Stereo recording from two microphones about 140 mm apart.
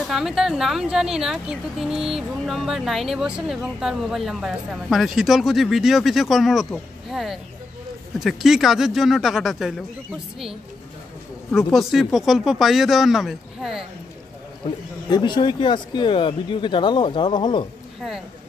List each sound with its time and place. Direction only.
0.0 s a woman's voice: centre (ahead or behind)
15.0 s speech: 30° left (ahead or behind)